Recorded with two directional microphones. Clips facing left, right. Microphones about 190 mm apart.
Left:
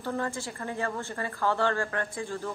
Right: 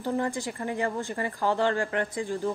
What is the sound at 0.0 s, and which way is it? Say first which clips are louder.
A woman's voice: right 4 dB; 15° right (ahead or behind).